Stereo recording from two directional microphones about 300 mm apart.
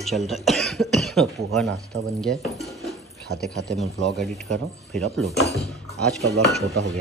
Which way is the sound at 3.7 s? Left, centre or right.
Centre.